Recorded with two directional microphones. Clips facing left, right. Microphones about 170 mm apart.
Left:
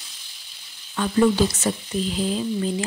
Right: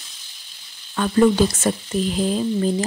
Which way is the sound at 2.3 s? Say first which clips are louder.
Right 4 dB; 45° right (ahead or behind).